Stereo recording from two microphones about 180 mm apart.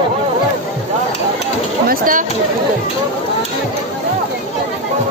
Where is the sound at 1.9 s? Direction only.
50° right (ahead or behind).